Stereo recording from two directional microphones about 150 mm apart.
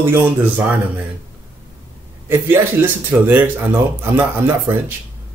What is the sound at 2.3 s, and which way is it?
Speech, 15° right (ahead or behind).